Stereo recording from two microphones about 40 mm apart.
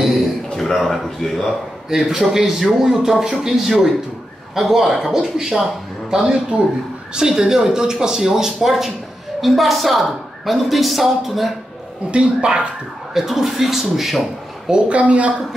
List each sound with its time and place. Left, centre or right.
0.6 s a sound: centre
0.9 s a woman's voice: centre
1.9 s a man's voice: centre
7.2 s a man's voice: centre
12.1 s a woman's voice: right
13.1 s a man's voice: centre
14.7 s a woman's voice: right